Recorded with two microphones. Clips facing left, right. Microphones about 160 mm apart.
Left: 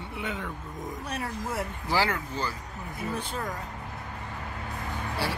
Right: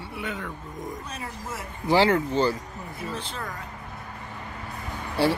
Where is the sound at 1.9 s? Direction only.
25° right (ahead or behind).